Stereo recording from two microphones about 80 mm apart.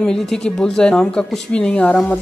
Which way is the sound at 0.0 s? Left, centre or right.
Centre.